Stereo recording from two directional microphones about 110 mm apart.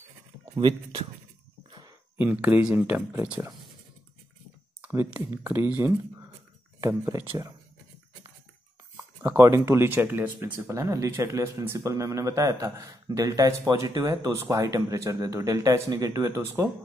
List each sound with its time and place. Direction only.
1.7 s a sound: 40° right (ahead or behind)
2.1 s speech: 15° right (ahead or behind)
4.8 s speech: 20° right (ahead or behind)
9.4 s speech: 25° right (ahead or behind)
10.7 s speech: 30° right (ahead or behind)